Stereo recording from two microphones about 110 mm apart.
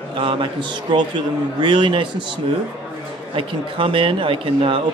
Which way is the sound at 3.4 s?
50° right (ahead or behind).